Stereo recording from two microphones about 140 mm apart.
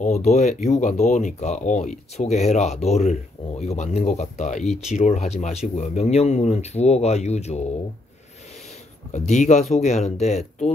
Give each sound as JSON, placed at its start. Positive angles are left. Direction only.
{"t": 0.0, "sound": "speech", "side_deg": 55}
{"t": 9.1, "sound": "speech", "side_deg": 60}